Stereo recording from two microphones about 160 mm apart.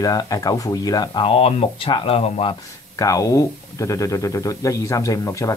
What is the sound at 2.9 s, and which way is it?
Speech, 20° left (ahead or behind).